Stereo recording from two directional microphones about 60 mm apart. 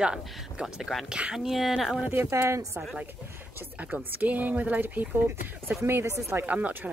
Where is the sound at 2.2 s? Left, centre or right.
Right.